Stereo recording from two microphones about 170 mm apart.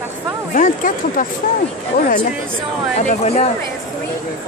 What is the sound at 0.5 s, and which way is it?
Speech, 50° left (ahead or behind).